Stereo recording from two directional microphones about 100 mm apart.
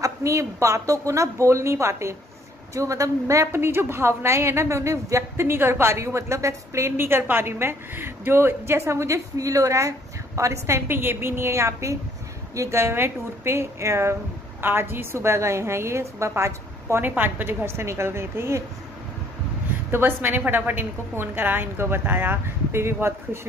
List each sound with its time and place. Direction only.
0.0 s a woman's voice: 30° right (ahead or behind)
19.9 s a woman's voice: 20° right (ahead or behind)